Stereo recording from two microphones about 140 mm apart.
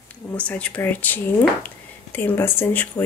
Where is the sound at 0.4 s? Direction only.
10° left (ahead or behind).